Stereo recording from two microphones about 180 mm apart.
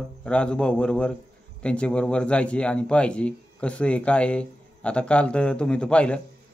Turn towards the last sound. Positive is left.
turn(degrees=5)  # may be behind; listen again after turning